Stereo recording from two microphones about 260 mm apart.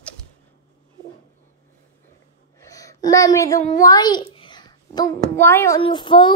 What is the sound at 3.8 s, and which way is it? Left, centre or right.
A child's voice, centre.